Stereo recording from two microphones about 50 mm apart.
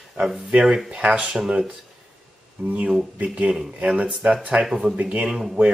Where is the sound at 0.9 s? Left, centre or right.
Right.